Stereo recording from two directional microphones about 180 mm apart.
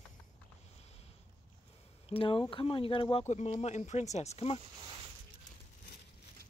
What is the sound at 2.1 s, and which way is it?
Speech, 30° left (ahead or behind).